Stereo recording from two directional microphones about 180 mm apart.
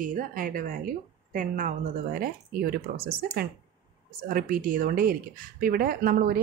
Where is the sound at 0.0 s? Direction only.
50° right (ahead or behind).